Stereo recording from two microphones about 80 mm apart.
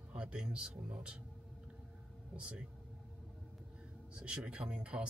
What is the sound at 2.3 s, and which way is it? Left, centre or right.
Speech, centre.